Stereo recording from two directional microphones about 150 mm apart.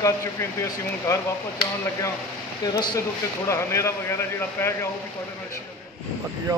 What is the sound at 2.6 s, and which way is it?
Speech, 25° left (ahead or behind).